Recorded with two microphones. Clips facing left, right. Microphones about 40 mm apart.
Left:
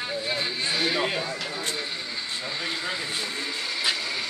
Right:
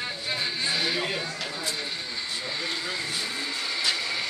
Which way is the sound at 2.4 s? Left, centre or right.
Centre.